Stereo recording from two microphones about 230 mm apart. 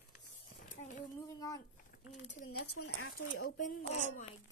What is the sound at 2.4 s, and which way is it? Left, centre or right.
Speech, left.